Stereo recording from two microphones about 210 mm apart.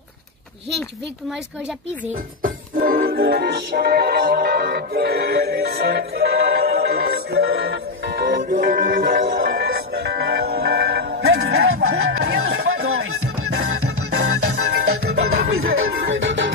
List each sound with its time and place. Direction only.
2.0 s music: 40° right (ahead or behind)
11.3 s music: 80° right
12.7 s music: 90° right; by 16.5 s 60° right (ahead or behind)